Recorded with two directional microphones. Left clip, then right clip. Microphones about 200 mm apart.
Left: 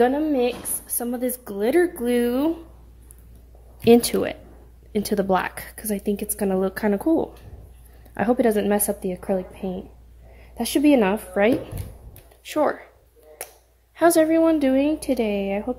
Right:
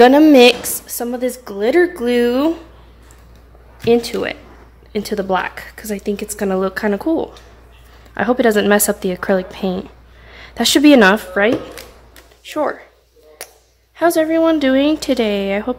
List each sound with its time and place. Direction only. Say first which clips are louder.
0.1 s speech: right 14 dB; 30° right (ahead or behind)
0.8 s a woman's voice: right 6 dB; 10° left (ahead or behind)
3.8 s speech: right 1 dB; 35° left (ahead or behind)
4.9 s a woman's voice: right 3 dB; 20° left (ahead or behind); by 11.1 s 5° right (ahead or behind)
11.4 s a woman's voice: even; 10° left (ahead or behind)
12.4 s speech: right 2 dB; 20° left (ahead or behind)
13.9 s speech: right 3 dB; 15° left (ahead or behind); by 15.8 s centre (ahead or behind)